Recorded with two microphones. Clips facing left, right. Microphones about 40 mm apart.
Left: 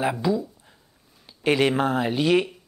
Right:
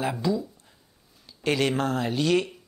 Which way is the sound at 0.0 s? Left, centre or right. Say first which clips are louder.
Left 3 dB; centre.